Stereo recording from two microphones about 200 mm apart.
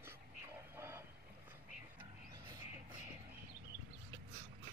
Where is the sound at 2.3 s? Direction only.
20° right (ahead or behind).